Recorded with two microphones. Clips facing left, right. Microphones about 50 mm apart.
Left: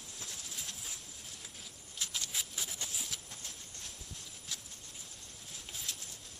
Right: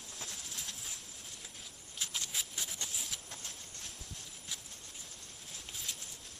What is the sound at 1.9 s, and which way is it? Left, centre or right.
Patter, centre.